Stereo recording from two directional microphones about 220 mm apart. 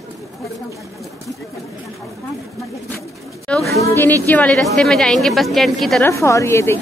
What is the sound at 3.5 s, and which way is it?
A woman's voice, 5° left (ahead or behind).